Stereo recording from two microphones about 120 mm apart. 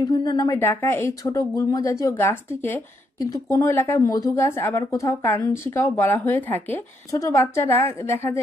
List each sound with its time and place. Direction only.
0.0 s a woman's voice: 35° left (ahead or behind)
0.6 s a woman's voice: 20° left (ahead or behind)